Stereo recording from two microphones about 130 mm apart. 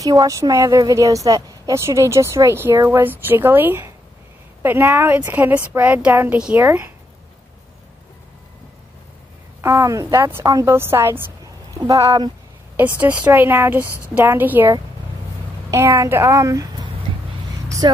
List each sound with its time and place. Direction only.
0.0 s a woman's voice: 25° right (ahead or behind)
9.6 s a woman's voice: 25° right (ahead or behind)
12.7 s a woman's voice: 10° right (ahead or behind)
13.8 s speech: 20° left (ahead or behind)
14.1 s a woman's voice: 15° right (ahead or behind)
15.7 s a woman's voice: 20° right (ahead or behind)
17.6 s vehicle: 25° right (ahead or behind)